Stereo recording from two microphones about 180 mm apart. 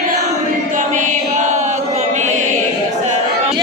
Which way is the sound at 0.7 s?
45° right (ahead or behind).